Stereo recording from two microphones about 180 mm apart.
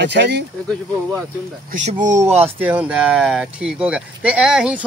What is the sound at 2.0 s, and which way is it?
Speech, 15° right (ahead or behind).